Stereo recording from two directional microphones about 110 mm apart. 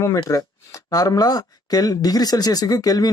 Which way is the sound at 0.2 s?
30° left (ahead or behind).